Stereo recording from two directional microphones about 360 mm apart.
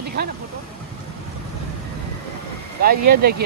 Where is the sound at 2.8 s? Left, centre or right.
Right.